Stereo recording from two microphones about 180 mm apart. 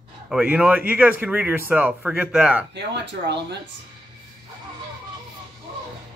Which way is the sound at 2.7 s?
70° right (ahead or behind).